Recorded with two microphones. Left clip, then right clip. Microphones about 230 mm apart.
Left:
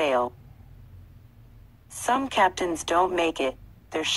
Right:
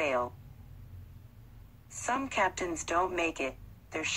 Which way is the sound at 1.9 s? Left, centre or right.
Left.